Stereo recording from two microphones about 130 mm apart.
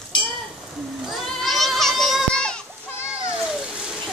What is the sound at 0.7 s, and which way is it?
Children playing, centre (ahead or behind).